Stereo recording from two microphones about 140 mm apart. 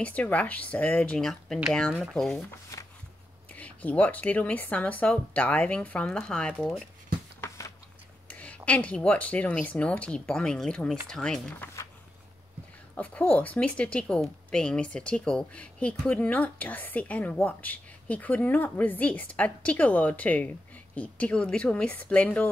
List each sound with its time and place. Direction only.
0.0 s speech: 10° left (ahead or behind)
3.5 s speech: 10° left (ahead or behind)
7.3 s a sound: 20° left (ahead or behind)
8.3 s speech: 10° left (ahead or behind)
11.6 s a sound: 20° left (ahead or behind)
12.9 s speech: 10° left (ahead or behind)